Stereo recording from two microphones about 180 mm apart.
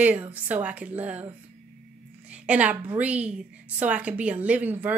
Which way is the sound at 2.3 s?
5° right (ahead or behind).